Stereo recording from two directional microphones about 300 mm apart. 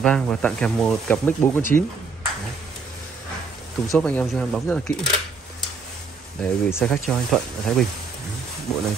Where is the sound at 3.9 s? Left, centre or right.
Centre.